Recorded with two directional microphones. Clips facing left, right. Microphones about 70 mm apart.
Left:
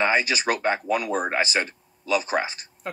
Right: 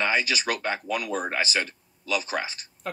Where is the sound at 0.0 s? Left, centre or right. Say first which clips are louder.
Left 3 dB; left.